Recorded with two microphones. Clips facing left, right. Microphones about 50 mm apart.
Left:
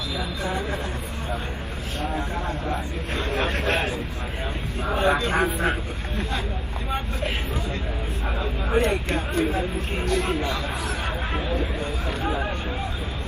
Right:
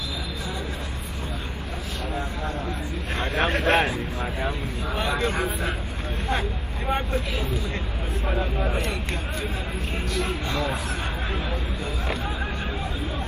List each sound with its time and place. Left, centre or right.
3.2 s speech: right
4.8 s speech: left
8.7 s speech: left